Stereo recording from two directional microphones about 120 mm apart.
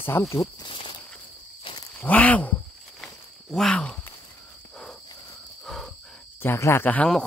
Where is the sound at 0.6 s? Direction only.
45° left (ahead or behind).